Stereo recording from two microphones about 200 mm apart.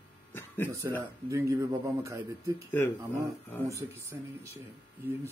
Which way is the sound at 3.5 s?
10° left (ahead or behind).